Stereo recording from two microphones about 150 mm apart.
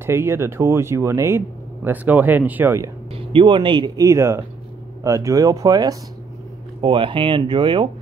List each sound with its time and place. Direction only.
0.0 s speech: 15° right (ahead or behind)
3.1 s speech: 35° right (ahead or behind)